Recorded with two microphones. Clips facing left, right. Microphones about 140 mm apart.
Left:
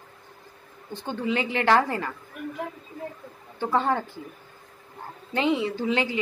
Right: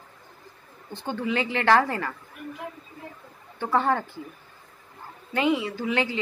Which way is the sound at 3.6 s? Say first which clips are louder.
Even; 20° left (ahead or behind).